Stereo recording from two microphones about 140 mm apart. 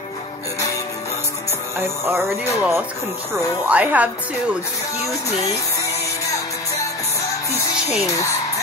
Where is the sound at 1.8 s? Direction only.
20° right (ahead or behind).